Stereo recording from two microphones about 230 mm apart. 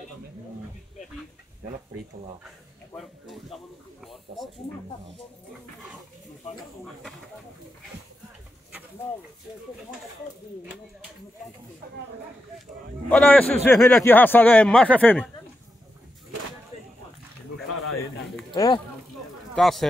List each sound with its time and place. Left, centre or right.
3.0 s speech: centre
6.8 s speech: centre
13.1 s a man's voice: centre
18.5 s speech: centre
19.5 s speech: centre